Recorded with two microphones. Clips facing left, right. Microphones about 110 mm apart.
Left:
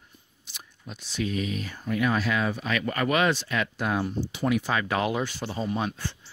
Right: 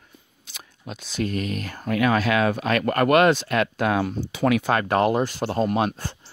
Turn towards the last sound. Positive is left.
turn(degrees=-65)  # may be behind; listen again after turning